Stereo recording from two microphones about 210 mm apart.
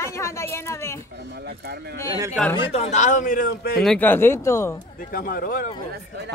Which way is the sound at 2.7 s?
30° left (ahead or behind).